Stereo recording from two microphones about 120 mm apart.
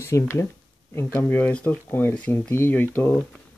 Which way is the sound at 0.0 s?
25° left (ahead or behind).